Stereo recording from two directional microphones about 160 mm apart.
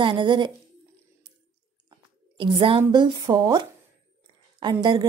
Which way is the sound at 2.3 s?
35° right (ahead or behind).